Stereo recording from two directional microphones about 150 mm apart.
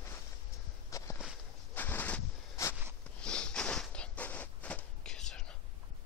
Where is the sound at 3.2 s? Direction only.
5° left (ahead or behind).